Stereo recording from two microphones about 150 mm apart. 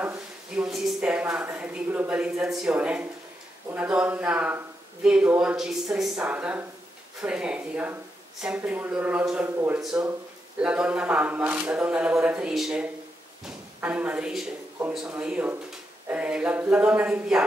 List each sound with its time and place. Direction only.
0.0 s speech: 10° right (ahead or behind)